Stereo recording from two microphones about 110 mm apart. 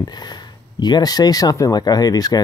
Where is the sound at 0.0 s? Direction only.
40° left (ahead or behind).